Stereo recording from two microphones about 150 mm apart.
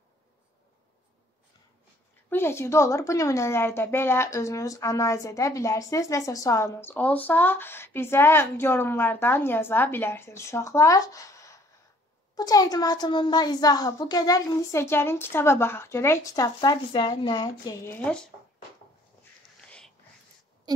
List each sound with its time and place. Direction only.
2.2 s a woman's voice: 15° left (ahead or behind)
17.9 s a woman's voice: 5° left (ahead or behind)